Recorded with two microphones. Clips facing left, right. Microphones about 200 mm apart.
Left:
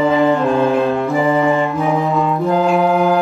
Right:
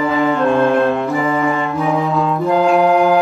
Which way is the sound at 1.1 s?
15° left (ahead or behind).